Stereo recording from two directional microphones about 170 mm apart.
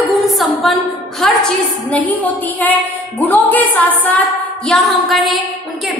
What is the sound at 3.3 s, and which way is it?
A woman's voice, 10° left (ahead or behind).